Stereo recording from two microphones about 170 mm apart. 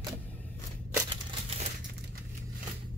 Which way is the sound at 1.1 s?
35° right (ahead or behind).